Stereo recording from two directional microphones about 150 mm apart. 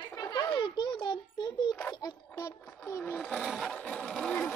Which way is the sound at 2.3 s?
20° left (ahead or behind).